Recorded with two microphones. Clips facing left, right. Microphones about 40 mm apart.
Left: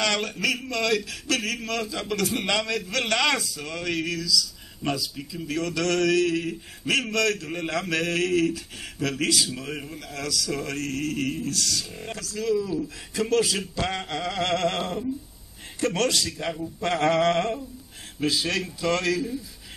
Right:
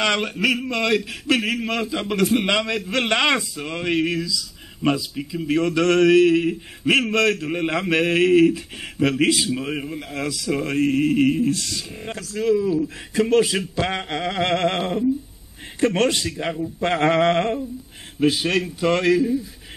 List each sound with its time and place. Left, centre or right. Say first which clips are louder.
0.0 s speech: right 4 dB; right